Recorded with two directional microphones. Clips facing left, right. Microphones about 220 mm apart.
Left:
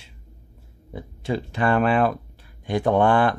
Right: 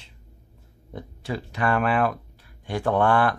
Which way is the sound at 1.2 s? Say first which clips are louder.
Left 3 dB; 25° left (ahead or behind).